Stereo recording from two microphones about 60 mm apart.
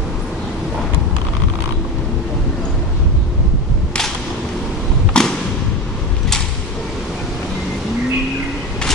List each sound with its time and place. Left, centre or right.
5.1 s thump: centre